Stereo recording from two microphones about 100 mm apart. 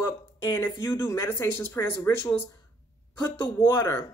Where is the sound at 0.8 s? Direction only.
25° left (ahead or behind).